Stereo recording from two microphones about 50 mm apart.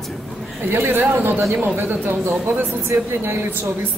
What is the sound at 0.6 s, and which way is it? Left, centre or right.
Speech, right.